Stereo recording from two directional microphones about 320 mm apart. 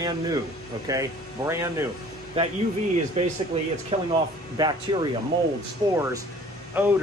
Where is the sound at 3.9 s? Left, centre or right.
Centre.